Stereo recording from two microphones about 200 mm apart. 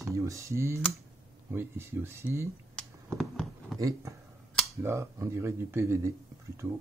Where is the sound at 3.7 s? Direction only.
15° right (ahead or behind).